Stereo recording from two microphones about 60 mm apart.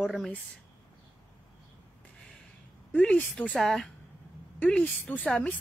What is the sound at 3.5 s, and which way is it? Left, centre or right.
Speech, centre.